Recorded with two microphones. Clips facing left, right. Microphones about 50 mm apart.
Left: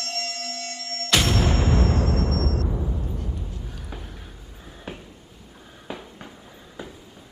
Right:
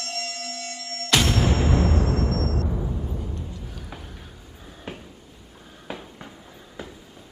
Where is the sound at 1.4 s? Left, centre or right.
Right.